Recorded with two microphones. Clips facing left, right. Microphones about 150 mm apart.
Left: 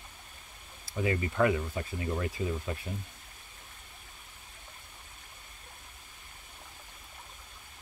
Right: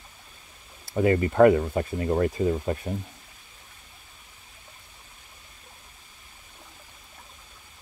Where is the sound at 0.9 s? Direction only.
50° right (ahead or behind).